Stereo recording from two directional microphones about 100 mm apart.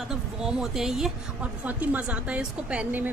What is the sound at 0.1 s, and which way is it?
A woman's voice, 5° right (ahead or behind).